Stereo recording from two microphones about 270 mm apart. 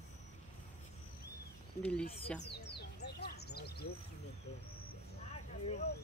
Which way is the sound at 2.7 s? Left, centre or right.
Left.